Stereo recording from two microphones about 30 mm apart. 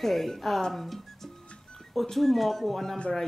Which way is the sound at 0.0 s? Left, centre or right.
Centre.